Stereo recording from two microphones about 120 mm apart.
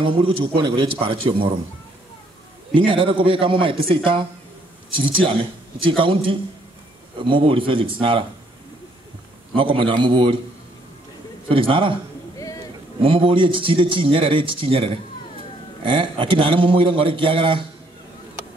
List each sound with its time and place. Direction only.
0.0 s a man's voice: 45° right (ahead or behind)
2.7 s a man's voice: 45° right (ahead or behind)
9.6 s a man's voice: 45° right (ahead or behind)
11.4 s a man's voice: 45° right (ahead or behind)
12.4 s a sound: 30° left (ahead or behind)
13.0 s a man's voice: 45° right (ahead or behind)